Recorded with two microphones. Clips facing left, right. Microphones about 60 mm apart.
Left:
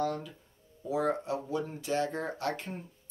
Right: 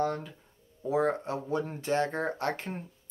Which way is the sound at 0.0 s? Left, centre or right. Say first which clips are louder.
Right 2 dB; right.